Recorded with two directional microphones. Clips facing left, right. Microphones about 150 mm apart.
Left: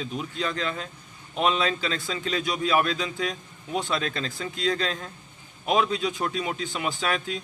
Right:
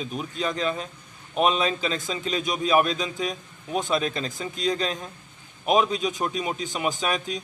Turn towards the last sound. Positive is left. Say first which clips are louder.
# right 1 dB
turn(degrees=-15)  # may be behind; listen again after turning